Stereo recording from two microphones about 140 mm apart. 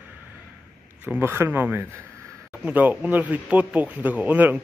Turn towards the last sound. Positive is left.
turn(degrees=-10)  # may be behind; listen again after turning